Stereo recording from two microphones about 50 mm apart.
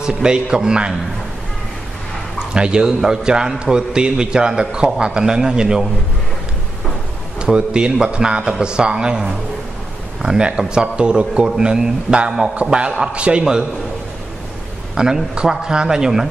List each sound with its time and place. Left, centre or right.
0.0 s a man's voice: centre
2.3 s a man's voice: centre
7.3 s a man's voice: centre
10.2 s a man's voice: centre
15.0 s a man's voice: centre